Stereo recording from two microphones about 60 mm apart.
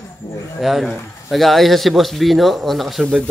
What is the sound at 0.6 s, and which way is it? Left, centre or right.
Speech, centre.